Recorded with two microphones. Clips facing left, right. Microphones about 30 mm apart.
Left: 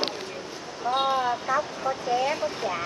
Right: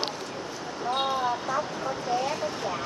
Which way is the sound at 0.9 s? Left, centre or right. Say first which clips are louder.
Left 3 dB; centre.